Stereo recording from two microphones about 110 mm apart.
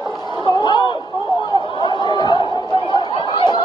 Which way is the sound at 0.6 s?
45° left (ahead or behind).